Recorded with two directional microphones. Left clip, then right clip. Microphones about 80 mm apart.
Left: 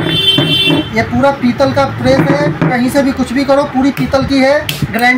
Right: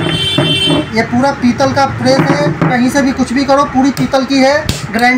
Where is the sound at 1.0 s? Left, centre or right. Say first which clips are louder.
Left 1 dB; left.